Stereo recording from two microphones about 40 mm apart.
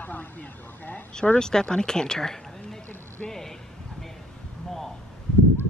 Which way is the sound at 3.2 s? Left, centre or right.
Centre.